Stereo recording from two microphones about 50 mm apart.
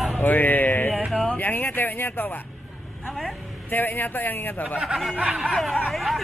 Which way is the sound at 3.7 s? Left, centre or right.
Left.